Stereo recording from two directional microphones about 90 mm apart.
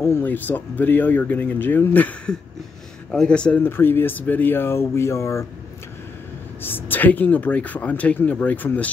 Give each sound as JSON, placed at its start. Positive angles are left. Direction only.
{"t": 0.0, "sound": "speech", "side_deg": 25}
{"t": 3.6, "sound": "speech", "side_deg": 25}
{"t": 6.6, "sound": "speech", "side_deg": 20}